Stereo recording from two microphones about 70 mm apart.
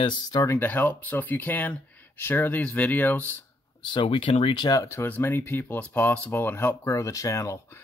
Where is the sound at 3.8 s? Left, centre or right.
Left.